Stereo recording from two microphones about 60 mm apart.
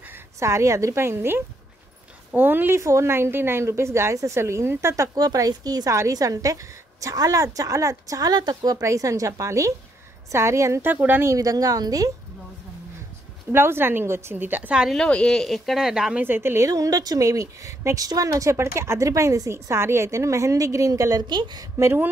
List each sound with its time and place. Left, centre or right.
0.4 s a woman's voice: right
2.8 s a woman's voice: right
5.9 s a woman's voice: right
8.8 s a woman's voice: right
10.3 s a woman's voice: right
10.8 s a woman's voice: right
11.2 s a woman's voice: right
13.5 s a woman's voice: right
15.0 s speech: centre
15.8 s speech: centre
16.2 s a woman's voice: right
16.5 s a woman's voice: right
18.6 s a woman's voice: right
19.5 s a woman's voice: right